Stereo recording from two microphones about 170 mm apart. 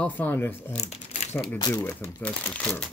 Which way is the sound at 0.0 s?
10° left (ahead or behind).